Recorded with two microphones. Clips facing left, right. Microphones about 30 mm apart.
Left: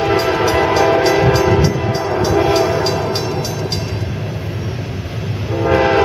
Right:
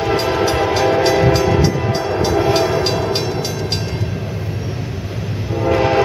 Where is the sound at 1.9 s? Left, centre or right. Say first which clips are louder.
Left 1 dB; centre.